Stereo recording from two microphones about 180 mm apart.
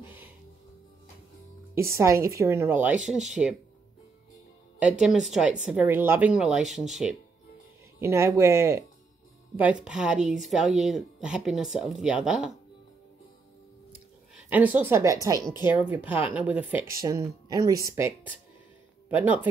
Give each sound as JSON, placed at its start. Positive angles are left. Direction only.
{"t": 1.8, "sound": "a woman's voice", "side_deg": -15}
{"t": 4.7, "sound": "speech", "side_deg": -5}
{"t": 8.0, "sound": "a woman's voice", "side_deg": -15}
{"t": 9.6, "sound": "speech", "side_deg": -5}
{"t": 14.5, "sound": "a woman's voice", "side_deg": -10}
{"t": 17.2, "sound": "a woman's voice", "side_deg": -20}